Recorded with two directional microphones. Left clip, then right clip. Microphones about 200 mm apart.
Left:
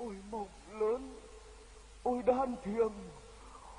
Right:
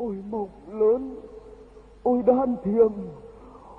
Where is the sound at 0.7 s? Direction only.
15° left (ahead or behind).